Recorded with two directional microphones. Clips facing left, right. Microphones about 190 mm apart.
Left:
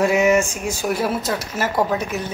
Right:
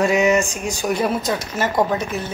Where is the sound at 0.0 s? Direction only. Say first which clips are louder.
Even; 15° right (ahead or behind).